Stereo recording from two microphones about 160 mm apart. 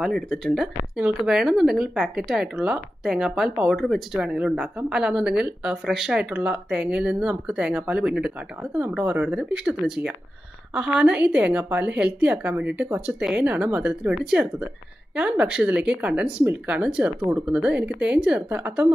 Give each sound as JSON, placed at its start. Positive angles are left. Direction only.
{"t": 0.0, "sound": "speech", "side_deg": 0}